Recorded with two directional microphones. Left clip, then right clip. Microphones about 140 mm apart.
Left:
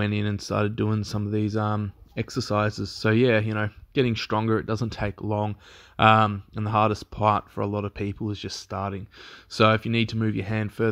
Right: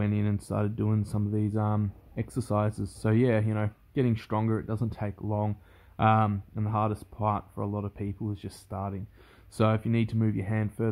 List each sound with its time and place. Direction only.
0.0 s speech: 20° left (ahead or behind)
8.3 s speech: 15° left (ahead or behind)